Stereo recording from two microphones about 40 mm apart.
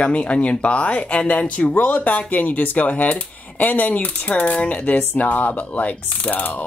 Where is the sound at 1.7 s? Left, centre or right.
Left.